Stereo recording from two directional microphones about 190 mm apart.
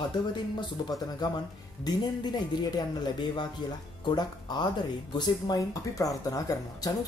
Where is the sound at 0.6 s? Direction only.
20° left (ahead or behind).